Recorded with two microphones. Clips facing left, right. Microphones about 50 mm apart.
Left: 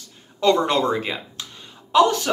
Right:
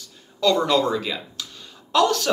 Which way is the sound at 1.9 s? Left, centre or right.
Left.